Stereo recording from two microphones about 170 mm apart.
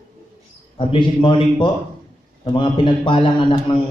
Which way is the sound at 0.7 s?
30° left (ahead or behind).